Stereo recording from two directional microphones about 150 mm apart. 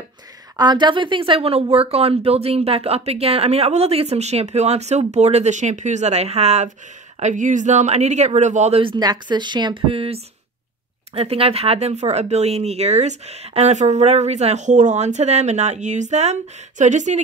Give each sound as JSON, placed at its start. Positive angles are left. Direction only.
{"t": 0.6, "sound": "a woman's voice", "side_deg": -30}
{"t": 8.8, "sound": "a woman's voice", "side_deg": -30}